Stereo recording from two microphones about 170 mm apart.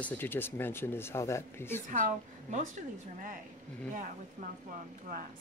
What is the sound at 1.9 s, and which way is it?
A woman's voice, 45° right (ahead or behind).